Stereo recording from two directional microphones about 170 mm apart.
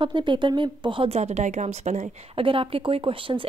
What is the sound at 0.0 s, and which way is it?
A woman's voice, 30° right (ahead or behind).